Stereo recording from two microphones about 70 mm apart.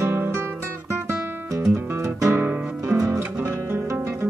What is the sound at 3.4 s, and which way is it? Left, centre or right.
Music, right.